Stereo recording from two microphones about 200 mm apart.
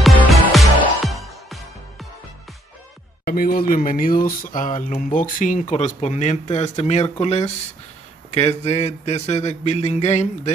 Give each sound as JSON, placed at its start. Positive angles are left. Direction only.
{"t": 0.0, "sound": "music", "side_deg": 0}
{"t": 3.3, "sound": "speech", "side_deg": 45}